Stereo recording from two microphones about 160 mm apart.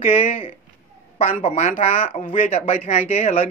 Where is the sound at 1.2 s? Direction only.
35° left (ahead or behind).